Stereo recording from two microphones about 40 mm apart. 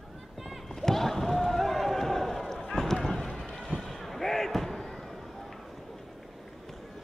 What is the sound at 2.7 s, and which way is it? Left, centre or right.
Run, centre.